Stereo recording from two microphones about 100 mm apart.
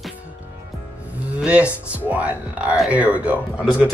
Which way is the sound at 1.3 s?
10° right (ahead or behind).